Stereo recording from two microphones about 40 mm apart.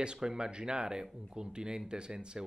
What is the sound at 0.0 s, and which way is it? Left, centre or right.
Speech, right.